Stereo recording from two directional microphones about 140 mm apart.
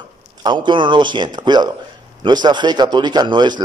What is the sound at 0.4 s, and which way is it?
A man's voice, 35° right (ahead or behind).